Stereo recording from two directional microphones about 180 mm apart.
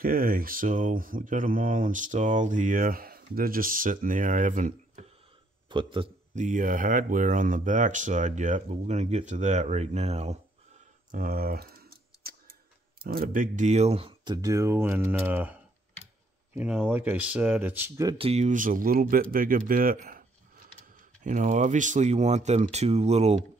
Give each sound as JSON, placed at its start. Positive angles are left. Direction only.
{"t": 0.0, "sound": "speech", "side_deg": -55}
{"t": 5.7, "sound": "speech", "side_deg": -30}
{"t": 6.3, "sound": "speech", "side_deg": -45}
{"t": 11.1, "sound": "typing", "side_deg": -50}
{"t": 13.1, "sound": "speech", "side_deg": -50}
{"t": 16.5, "sound": "speech", "side_deg": -5}
{"t": 18.1, "sound": "speech", "side_deg": -35}